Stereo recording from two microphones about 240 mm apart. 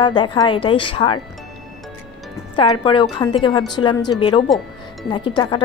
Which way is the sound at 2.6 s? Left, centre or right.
Left.